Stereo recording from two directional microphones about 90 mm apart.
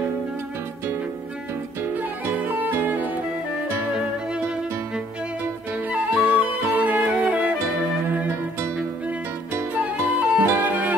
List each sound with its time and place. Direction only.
1.8 s music: 20° right (ahead or behind)
5.9 s music: 15° right (ahead or behind)
9.8 s music: 20° right (ahead or behind)